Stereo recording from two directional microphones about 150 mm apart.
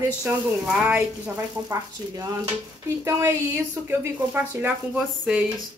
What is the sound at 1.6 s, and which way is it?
A woman's voice, 20° right (ahead or behind).